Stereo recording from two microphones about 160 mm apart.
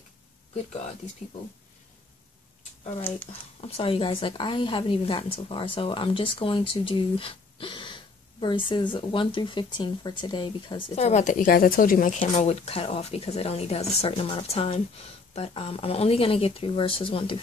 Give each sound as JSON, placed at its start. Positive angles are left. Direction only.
{"t": 3.6, "sound": "a woman's voice", "side_deg": 35}